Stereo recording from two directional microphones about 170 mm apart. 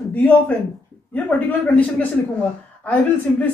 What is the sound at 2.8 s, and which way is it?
Speech, 10° left (ahead or behind).